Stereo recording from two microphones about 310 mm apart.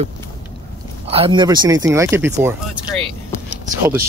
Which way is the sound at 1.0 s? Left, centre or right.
Centre.